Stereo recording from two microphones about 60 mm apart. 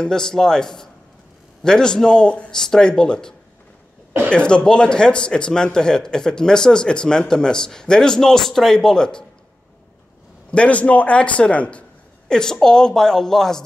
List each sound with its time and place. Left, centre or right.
0.0 s a man's voice: centre
10.5 s a man's voice: left
12.3 s a man's voice: centre